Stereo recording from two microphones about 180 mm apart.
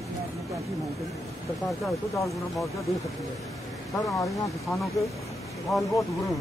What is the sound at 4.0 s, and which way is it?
Speech, 20° left (ahead or behind).